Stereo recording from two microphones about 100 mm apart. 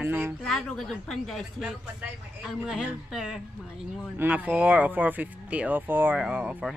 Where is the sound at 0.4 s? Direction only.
5° left (ahead or behind).